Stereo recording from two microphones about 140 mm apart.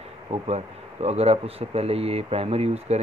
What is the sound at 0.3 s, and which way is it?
Speech, 50° right (ahead or behind).